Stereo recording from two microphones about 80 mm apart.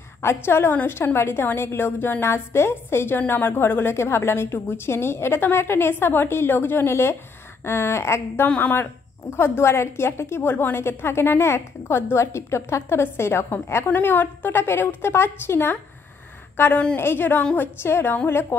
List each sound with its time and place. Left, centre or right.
0.2 s a woman's voice: left
8.5 s a woman's voice: left
9.3 s a woman's voice: left
13.8 s a woman's voice: left